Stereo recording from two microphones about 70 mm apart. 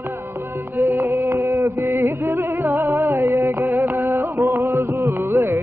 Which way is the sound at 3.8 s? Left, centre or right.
Right.